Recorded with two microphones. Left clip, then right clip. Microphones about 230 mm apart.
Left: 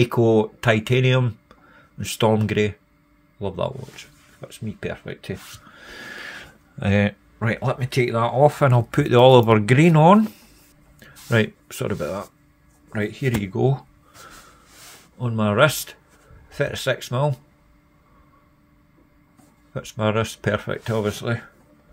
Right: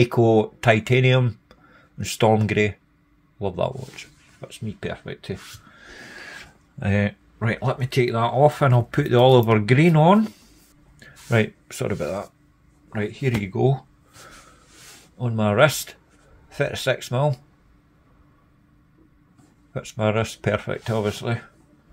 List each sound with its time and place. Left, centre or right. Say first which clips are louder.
0.0 s speech: even; centre
12.9 s speech: left 1 dB; centre
13.4 s a sound: right 2 dB; centre
15.1 s speech: even; centre
19.7 s speech: even; centre